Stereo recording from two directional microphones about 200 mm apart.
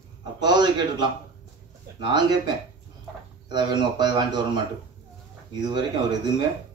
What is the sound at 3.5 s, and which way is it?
A man's voice, 20° right (ahead or behind).